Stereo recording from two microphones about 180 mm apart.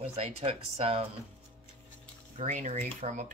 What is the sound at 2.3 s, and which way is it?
Speech, 40° right (ahead or behind).